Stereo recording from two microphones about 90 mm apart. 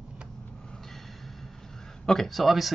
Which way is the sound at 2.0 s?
5° left (ahead or behind).